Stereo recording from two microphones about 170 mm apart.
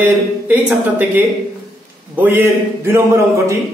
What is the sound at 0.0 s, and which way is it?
Speech, 10° right (ahead or behind).